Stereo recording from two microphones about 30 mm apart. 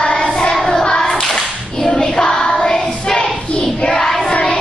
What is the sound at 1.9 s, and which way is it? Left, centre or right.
Child singing, left.